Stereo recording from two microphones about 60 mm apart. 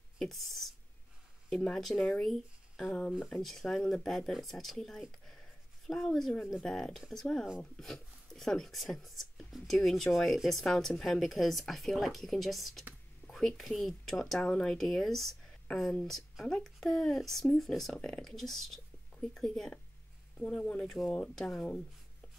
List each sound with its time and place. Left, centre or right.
0.2 s speech: centre
3.4 s speech: centre
5.2 s a sound: centre
6.6 s speech: centre
14.4 s speech: centre
14.7 s speech: centre
16.4 s speech: centre
17.9 s speech: centre
18.2 s speech: centre
20.3 s speech: left